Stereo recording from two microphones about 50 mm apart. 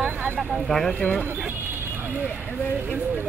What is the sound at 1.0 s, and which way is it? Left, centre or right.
Speech, left.